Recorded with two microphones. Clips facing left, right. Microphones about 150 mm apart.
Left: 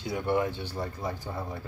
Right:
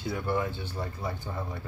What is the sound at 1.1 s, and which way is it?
Speech, 35° left (ahead or behind).